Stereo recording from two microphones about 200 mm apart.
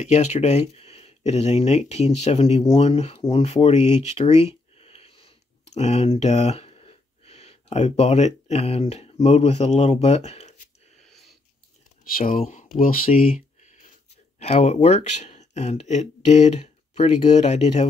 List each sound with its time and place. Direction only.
0.0 s speech: 35° left (ahead or behind)
2.7 s a sound: 30° left (ahead or behind)
8.5 s speech: 35° left (ahead or behind)
11.1 s sniff: centre (ahead or behind)
12.2 s speech: 45° left (ahead or behind)
14.4 s speech: 30° left (ahead or behind)